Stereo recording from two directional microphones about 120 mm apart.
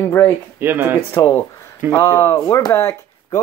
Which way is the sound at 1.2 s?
35° left (ahead or behind).